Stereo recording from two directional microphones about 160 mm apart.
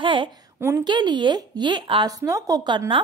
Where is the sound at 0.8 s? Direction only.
30° right (ahead or behind).